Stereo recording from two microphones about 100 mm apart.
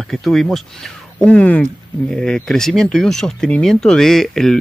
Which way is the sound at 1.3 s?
15° left (ahead or behind).